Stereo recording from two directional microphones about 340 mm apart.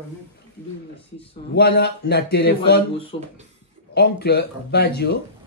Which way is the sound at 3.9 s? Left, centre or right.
Left.